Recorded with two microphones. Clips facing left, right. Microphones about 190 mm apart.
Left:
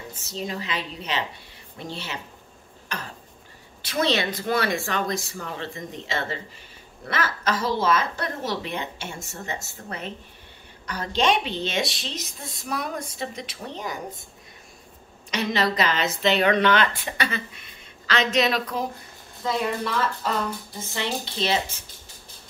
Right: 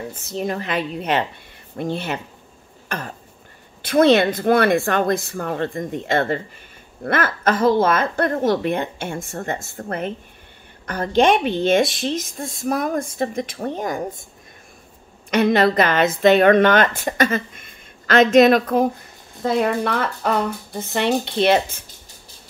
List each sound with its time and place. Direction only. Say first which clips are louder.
0.1 s a woman's voice: right 4 dB; 55° right (ahead or behind)
3.8 s a woman's voice: right 10 dB; 55° right (ahead or behind)
15.3 s a woman's voice: right 8 dB; 55° right (ahead or behind)